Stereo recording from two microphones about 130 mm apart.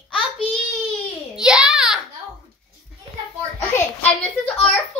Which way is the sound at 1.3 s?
5° right (ahead or behind).